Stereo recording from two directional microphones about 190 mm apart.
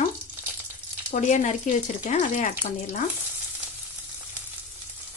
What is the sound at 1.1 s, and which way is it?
Speech, 40° left (ahead or behind).